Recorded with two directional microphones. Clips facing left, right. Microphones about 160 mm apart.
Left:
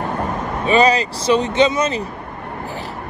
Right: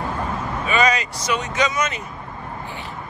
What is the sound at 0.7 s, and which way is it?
Speech, 30° left (ahead or behind).